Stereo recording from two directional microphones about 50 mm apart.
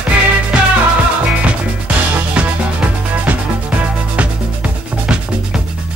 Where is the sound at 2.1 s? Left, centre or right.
Right.